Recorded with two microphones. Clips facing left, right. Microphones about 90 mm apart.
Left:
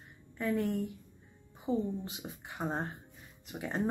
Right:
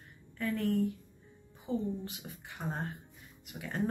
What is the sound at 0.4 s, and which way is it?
Speech, 20° left (ahead or behind).